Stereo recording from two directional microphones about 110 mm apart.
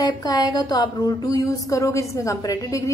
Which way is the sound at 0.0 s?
35° left (ahead or behind).